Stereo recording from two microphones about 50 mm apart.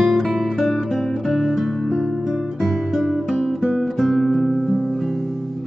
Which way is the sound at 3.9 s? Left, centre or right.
Centre.